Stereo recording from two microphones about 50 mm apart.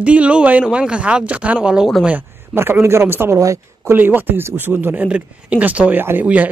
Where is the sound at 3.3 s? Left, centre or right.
Right.